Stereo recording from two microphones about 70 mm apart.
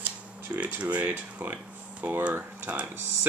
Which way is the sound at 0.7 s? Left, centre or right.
Right.